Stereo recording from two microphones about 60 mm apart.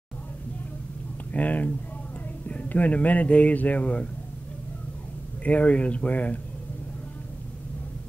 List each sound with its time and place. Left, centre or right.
1.3 s a man's voice: left
5.4 s a man's voice: left